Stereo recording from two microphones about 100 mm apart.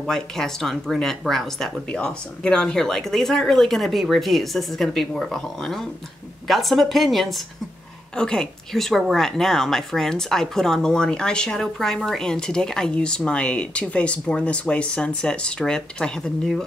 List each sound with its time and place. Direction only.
0.0 s speech: 5° left (ahead or behind)